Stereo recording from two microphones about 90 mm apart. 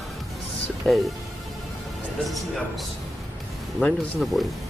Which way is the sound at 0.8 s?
Centre (ahead or behind).